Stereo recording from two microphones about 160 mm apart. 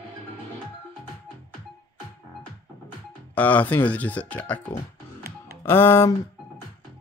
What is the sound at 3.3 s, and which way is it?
Speech, 10° left (ahead or behind).